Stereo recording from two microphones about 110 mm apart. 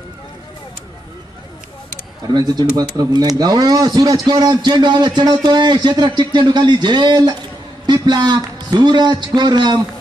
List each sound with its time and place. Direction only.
2.8 s a man's voice: 40° right (ahead or behind)